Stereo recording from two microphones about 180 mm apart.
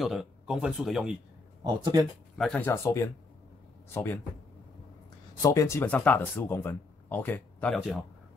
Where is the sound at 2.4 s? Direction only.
5° left (ahead or behind).